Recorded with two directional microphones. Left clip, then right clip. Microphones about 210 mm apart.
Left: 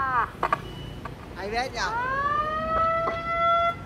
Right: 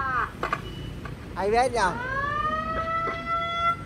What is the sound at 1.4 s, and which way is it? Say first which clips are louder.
Speech: right 6 dB; 10° left (ahead or behind).